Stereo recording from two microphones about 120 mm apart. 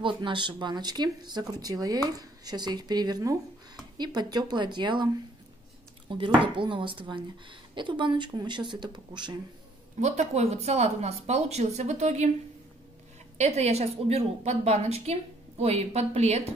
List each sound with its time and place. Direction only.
0.0 s speech: 45° right (ahead or behind)
9.9 s speech: 75° right (ahead or behind)
13.4 s a woman's voice: 60° right (ahead or behind)